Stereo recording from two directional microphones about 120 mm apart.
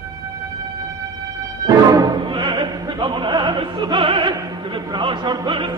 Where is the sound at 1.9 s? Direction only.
35° right (ahead or behind).